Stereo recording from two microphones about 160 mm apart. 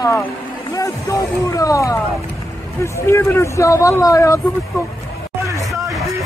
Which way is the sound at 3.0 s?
15° left (ahead or behind).